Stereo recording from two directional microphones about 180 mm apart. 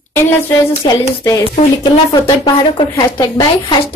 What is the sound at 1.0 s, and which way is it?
A woman's voice, 15° left (ahead or behind).